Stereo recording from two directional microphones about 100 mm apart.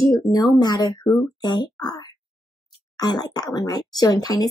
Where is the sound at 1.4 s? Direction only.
45° left (ahead or behind).